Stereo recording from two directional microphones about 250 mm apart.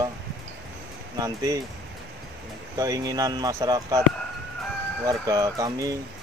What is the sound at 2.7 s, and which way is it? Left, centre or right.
Speech, centre.